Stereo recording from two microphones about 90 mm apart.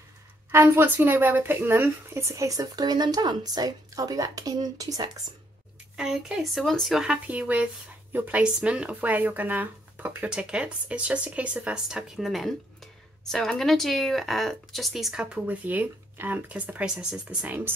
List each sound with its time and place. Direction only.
0.5 s speech: 25° right (ahead or behind); by 5.2 s 45° right (ahead or behind)
5.9 s speech: 10° right (ahead or behind)
7.2 s speech: 15° right (ahead or behind)